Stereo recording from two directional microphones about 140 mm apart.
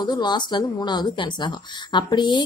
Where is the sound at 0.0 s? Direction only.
30° left (ahead or behind).